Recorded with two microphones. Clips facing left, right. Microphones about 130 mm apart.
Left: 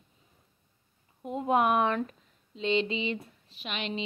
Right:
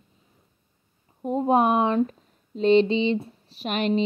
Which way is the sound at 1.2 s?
40° right (ahead or behind).